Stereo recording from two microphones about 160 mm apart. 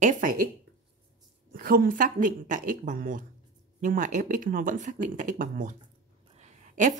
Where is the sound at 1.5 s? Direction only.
65° right (ahead or behind).